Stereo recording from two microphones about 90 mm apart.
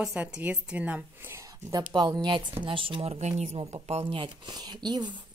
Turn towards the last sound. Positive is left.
turn(degrees=-50)  # may be behind; listen again after turning